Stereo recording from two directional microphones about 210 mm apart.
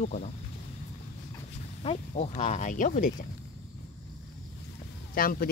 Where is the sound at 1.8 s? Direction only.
30° left (ahead or behind).